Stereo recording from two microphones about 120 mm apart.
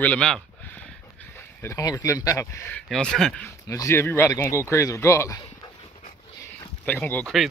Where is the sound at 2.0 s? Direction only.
25° left (ahead or behind).